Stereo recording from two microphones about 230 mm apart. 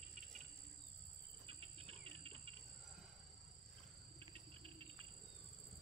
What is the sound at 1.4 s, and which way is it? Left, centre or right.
Cricket, right.